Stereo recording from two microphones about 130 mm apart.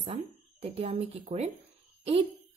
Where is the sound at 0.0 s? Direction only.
45° right (ahead or behind).